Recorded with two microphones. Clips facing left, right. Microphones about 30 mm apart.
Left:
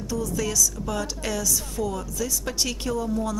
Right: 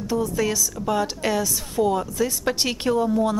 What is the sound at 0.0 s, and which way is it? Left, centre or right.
Speech, right.